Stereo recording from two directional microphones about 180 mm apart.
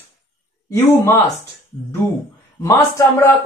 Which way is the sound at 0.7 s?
15° left (ahead or behind).